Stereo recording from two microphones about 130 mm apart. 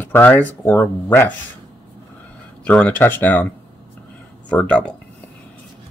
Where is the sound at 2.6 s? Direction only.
10° left (ahead or behind).